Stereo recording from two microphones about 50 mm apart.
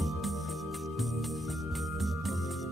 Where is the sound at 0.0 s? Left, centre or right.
Centre.